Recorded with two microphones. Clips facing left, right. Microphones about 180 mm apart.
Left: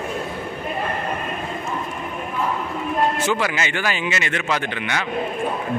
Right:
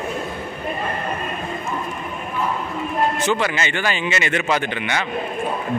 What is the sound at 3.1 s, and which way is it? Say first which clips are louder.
Speech: right 1 dB; 5° left (ahead or behind).